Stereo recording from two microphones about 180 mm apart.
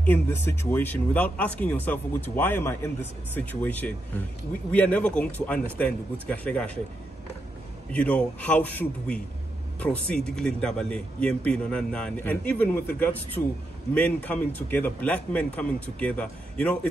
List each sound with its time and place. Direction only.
0.0 s speech: 10° left (ahead or behind)
7.9 s a man's voice: 5° left (ahead or behind)
13.9 s speech: 10° left (ahead or behind)